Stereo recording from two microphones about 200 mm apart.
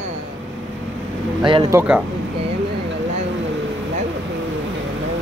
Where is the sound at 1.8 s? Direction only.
5° right (ahead or behind).